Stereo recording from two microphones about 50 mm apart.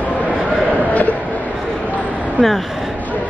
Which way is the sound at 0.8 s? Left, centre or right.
Left.